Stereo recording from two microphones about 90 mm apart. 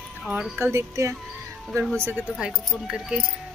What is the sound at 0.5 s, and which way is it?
Speech, 30° right (ahead or behind).